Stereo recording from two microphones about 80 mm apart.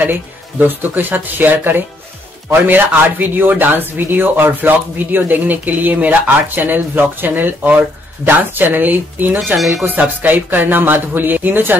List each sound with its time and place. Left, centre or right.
0.0 s speech: right